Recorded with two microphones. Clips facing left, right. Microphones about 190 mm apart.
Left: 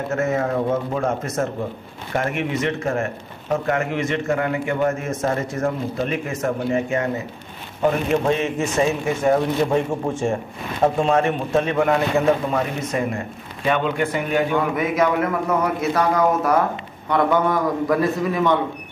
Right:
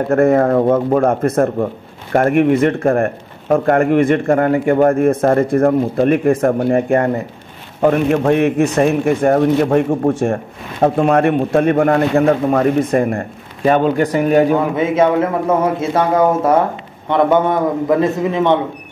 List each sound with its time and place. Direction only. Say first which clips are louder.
0.1 s speech: right 10 dB; 55° right (ahead or behind); by 14.6 s 40° right (ahead or behind)
14.8 s a man's voice: right 6 dB; 25° right (ahead or behind)